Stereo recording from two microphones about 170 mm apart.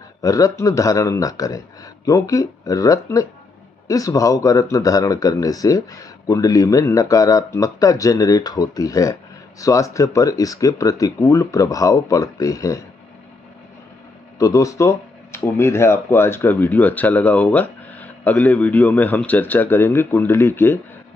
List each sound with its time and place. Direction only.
0.2 s speech: 20° left (ahead or behind)
14.4 s speech: 20° left (ahead or behind)